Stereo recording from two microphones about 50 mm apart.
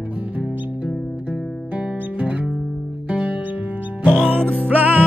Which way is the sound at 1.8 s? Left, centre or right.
Right.